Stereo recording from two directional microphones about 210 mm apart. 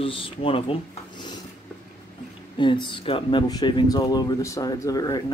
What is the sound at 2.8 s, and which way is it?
Speech, 25° left (ahead or behind).